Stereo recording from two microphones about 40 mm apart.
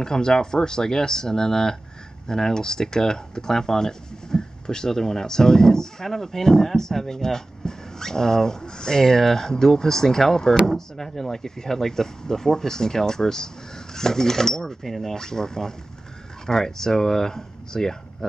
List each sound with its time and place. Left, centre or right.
0.0 s speech: centre